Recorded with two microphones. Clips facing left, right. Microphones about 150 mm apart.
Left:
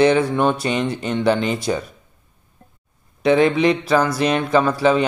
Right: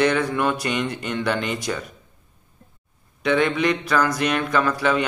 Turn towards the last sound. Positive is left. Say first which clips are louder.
# left 5 dB
turn(degrees=30)  # may be behind; listen again after turning